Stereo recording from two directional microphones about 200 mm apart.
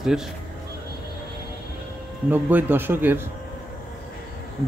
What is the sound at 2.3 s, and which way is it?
Speech, 10° right (ahead or behind).